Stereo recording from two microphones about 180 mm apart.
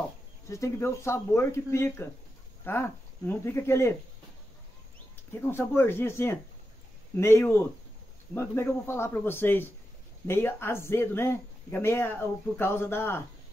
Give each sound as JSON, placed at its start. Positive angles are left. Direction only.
{"t": 0.5, "sound": "speech", "side_deg": 15}
{"t": 5.3, "sound": "speech", "side_deg": 10}